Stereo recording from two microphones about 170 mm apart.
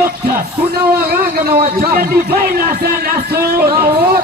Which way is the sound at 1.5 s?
60° right (ahead or behind).